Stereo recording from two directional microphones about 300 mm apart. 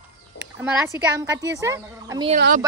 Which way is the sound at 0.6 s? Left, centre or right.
Centre.